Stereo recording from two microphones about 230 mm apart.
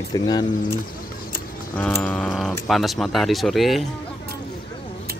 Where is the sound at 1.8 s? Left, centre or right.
Centre.